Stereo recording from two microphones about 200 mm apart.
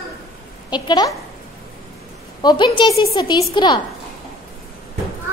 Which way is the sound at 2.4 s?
20° left (ahead or behind).